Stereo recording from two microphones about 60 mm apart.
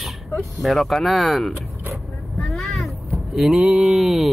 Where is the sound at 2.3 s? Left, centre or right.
Centre.